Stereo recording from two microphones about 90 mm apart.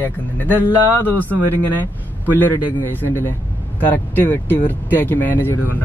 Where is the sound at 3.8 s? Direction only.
20° left (ahead or behind).